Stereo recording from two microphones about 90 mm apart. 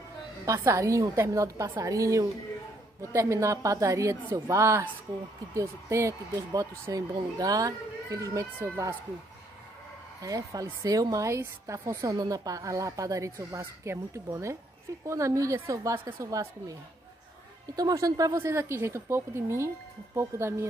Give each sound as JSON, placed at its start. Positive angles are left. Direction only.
{"t": 0.5, "sound": "a woman's voice", "side_deg": -35}
{"t": 10.2, "sound": "a woman's voice", "side_deg": -45}
{"t": 17.7, "sound": "a woman's voice", "side_deg": -40}